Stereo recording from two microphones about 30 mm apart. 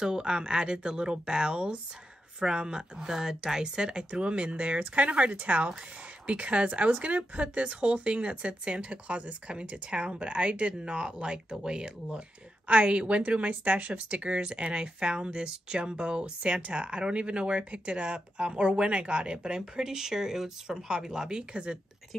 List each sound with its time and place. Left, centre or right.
0.0 s speech: right
3.1 s speech: centre
3.6 s speech: right
4.1 s speech: right
8.9 s speech: right
10.9 s speech: right
12.6 s speech: right